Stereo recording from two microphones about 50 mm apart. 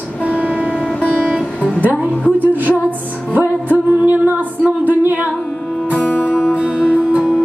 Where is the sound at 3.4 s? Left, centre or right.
Right.